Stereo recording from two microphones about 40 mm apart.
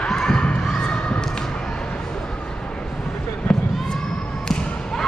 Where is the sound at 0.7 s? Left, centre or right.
Left.